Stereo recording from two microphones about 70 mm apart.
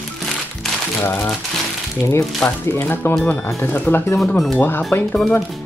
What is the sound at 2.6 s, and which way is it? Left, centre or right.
Speech, left.